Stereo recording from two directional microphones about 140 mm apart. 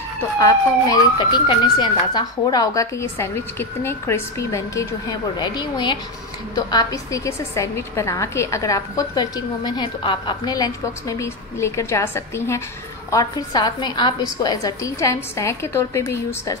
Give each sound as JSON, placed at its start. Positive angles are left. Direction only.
{"t": 0.4, "sound": "a woman's voice", "side_deg": 25}